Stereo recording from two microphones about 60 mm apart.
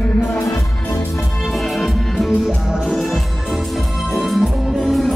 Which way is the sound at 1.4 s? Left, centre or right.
Centre.